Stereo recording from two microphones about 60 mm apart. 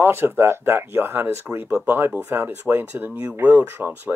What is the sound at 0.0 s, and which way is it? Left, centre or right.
Speech, right.